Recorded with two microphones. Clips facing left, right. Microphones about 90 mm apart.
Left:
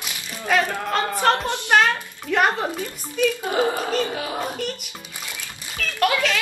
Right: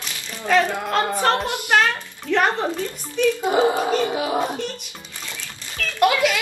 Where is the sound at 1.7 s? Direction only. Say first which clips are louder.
Left 1 dB; 10° left (ahead or behind).